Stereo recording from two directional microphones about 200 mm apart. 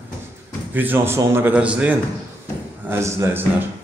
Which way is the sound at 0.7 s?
10° right (ahead or behind).